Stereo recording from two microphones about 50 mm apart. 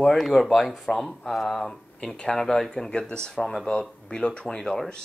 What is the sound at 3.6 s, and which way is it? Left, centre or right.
Speech, centre.